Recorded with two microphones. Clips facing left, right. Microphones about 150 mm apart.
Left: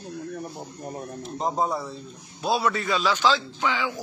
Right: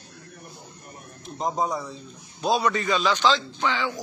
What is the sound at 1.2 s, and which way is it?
A man's voice, centre (ahead or behind).